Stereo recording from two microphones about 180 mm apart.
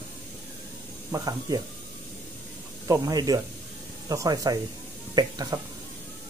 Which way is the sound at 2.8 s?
20° right (ahead or behind).